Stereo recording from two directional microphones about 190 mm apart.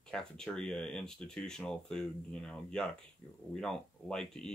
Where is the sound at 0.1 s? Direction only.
5° left (ahead or behind).